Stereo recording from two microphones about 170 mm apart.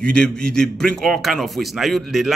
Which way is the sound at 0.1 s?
5° left (ahead or behind).